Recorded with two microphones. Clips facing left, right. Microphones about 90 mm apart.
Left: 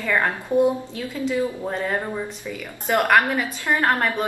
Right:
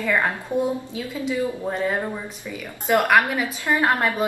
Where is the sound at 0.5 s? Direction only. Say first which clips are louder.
Left 7 dB; centre (ahead or behind).